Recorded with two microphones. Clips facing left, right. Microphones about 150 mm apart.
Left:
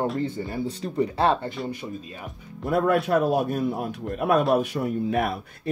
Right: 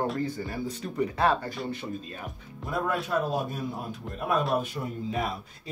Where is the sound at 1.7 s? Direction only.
15° left (ahead or behind).